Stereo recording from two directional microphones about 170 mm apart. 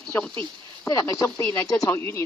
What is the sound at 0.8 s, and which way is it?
Speech, 20° left (ahead or behind).